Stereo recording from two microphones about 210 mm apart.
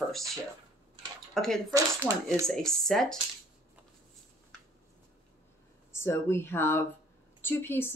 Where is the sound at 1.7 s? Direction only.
15° right (ahead or behind).